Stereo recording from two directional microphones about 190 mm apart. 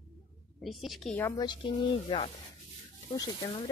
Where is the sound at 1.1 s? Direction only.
15° left (ahead or behind).